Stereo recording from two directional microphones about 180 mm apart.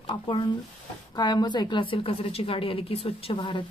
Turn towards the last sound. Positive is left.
turn(degrees=30)  # may be behind; listen again after turning